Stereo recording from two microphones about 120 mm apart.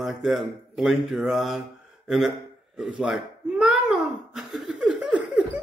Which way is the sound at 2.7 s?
10° right (ahead or behind).